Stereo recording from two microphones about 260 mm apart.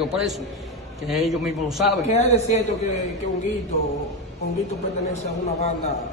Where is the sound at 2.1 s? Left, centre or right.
Left.